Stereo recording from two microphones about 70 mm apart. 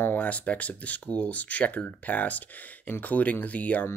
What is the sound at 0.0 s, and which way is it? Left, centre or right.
Speech, left.